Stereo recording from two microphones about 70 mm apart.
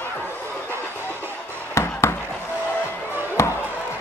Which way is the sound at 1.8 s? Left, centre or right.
Left.